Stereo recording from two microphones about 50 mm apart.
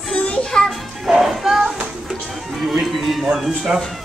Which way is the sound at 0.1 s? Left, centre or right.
Centre.